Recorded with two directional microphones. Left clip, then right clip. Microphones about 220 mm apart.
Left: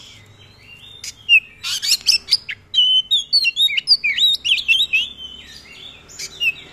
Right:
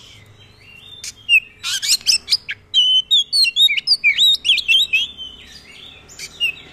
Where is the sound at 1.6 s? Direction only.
15° right (ahead or behind).